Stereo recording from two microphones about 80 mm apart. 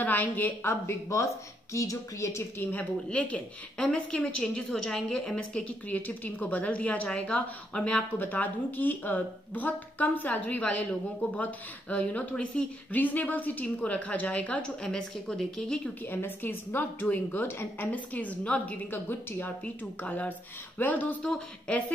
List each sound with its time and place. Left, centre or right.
0.0 s a sound: left
0.7 s speech: left
2.7 s a woman's voice: centre
16.1 s a woman's voice: left